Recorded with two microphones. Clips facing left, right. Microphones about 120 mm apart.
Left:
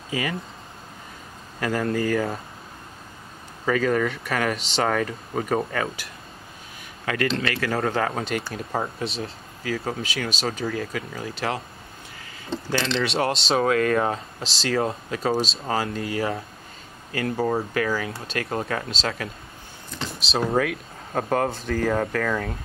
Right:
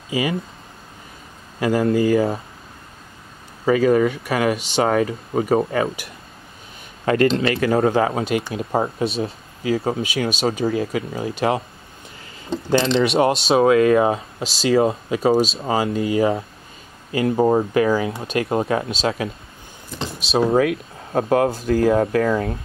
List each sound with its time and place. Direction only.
0.1 s speech: 15° right (ahead or behind)
1.6 s speech: 15° right (ahead or behind)
3.6 s speech: 10° right (ahead or behind)
7.1 s speech: 25° right (ahead or behind)
20.3 s speech: 15° right (ahead or behind)
22.2 s speech: 25° right (ahead or behind)